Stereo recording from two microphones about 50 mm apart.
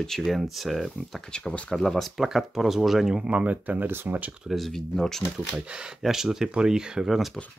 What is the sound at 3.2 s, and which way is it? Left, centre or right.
Speech, right.